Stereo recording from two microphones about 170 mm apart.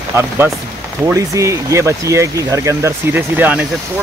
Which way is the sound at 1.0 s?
15° right (ahead or behind).